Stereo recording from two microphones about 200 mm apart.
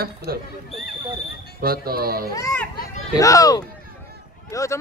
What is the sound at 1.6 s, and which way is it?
Speech, 50° right (ahead or behind).